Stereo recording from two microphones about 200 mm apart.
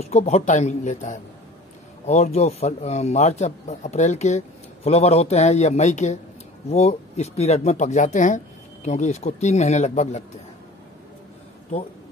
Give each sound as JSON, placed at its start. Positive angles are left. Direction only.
{"t": 0.0, "sound": "speech", "side_deg": 35}